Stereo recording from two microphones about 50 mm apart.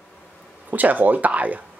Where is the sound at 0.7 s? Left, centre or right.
Right.